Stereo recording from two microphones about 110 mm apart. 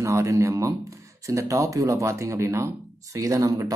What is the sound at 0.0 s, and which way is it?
Speech, 25° right (ahead or behind).